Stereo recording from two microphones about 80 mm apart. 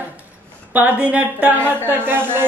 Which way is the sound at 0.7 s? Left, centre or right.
Centre.